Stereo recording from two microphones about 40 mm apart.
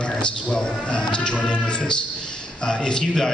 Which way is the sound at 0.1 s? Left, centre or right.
Left.